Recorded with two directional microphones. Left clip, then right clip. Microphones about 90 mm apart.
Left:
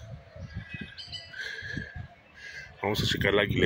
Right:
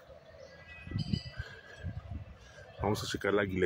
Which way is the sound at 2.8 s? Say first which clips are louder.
Left 6 dB; 25° right (ahead or behind).